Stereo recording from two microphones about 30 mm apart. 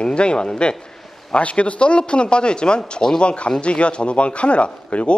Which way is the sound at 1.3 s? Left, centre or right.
Left.